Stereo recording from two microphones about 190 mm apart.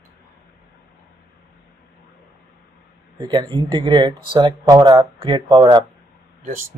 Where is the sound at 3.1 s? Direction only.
25° right (ahead or behind).